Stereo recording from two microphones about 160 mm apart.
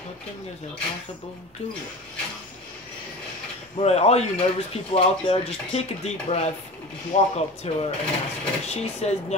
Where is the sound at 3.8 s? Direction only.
40° left (ahead or behind).